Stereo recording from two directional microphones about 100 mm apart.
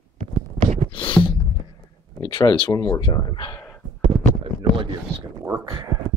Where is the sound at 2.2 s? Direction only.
45° left (ahead or behind).